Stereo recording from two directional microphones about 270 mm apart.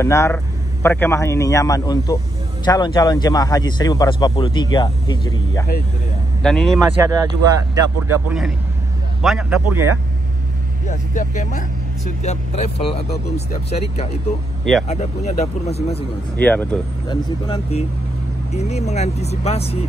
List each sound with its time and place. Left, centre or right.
0.0 s speech: centre
6.4 s speech: centre
7.0 s speech: centre
10.9 s speech: left
16.3 s speech: centre
17.5 s speech: left